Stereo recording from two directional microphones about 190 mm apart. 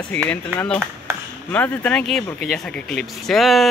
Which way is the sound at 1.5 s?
5° left (ahead or behind).